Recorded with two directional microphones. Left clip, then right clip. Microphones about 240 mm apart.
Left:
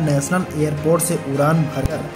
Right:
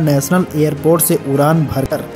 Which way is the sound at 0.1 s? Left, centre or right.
Right.